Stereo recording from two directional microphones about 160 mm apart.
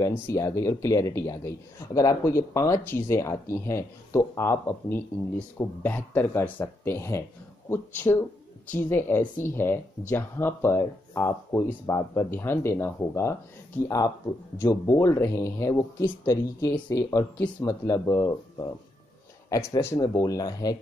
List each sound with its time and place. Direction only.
0.0 s speech: 20° left (ahead or behind)
17.4 s speech: 10° left (ahead or behind)